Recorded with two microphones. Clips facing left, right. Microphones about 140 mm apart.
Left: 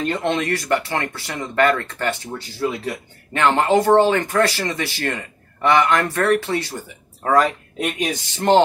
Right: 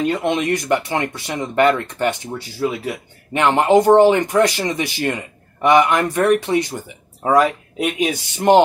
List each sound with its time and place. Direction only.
0.0 s speech: 10° right (ahead or behind)